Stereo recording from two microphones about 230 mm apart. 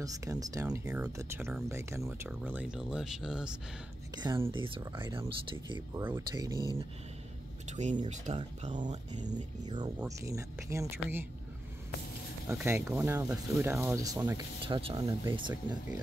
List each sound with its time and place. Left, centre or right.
0.0 s speech: centre
4.2 s speech: centre
7.6 s speech: right
9.7 s speech: centre
12.4 s speech: centre